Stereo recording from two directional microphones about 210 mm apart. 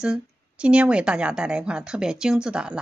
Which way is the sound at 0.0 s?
5° right (ahead or behind).